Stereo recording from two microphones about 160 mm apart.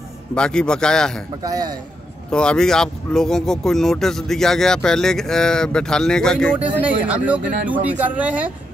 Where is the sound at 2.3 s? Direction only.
5° left (ahead or behind).